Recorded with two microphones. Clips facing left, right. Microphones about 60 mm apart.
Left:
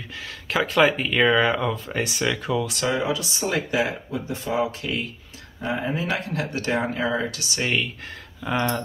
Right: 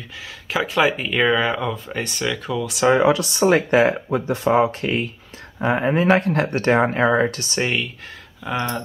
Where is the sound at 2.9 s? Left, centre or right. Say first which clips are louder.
Right 11 dB; right.